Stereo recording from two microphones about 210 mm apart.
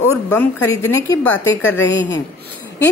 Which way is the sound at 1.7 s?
65° left (ahead or behind).